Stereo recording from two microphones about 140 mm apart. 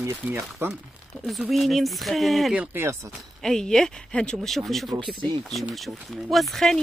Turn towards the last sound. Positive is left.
turn(degrees=5)  # may be behind; listen again after turning